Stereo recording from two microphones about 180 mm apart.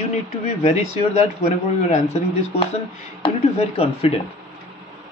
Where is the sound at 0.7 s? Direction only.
40° left (ahead or behind).